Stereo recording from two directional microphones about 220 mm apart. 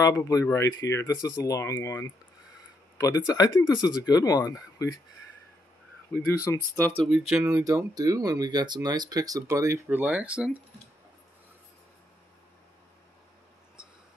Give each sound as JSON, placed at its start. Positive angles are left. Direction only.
{"t": 0.0, "sound": "speech", "side_deg": 15}
{"t": 3.3, "sound": "speech", "side_deg": 15}
{"t": 6.1, "sound": "speech", "side_deg": 15}
{"t": 7.0, "sound": "speech", "side_deg": 0}
{"t": 7.4, "sound": "speech", "side_deg": -15}